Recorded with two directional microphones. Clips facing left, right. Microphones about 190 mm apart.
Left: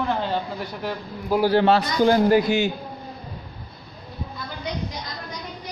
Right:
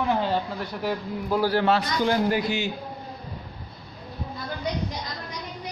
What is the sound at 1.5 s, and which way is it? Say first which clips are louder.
A man's voice: left 4 dB; 30° left (ahead or behind).